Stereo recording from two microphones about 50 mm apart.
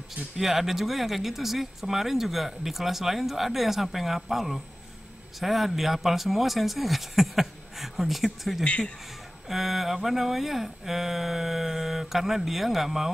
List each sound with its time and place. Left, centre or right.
0.4 s speech: centre
8.6 s a man's voice: left
9.5 s speech: centre